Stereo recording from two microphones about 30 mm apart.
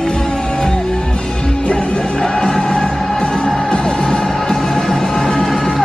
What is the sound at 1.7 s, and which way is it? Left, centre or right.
Music, left.